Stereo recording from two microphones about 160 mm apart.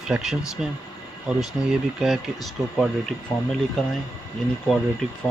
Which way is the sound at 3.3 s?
30° left (ahead or behind).